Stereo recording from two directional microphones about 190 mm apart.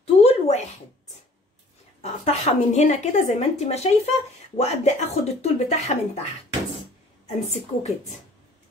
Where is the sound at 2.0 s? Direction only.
35° left (ahead or behind).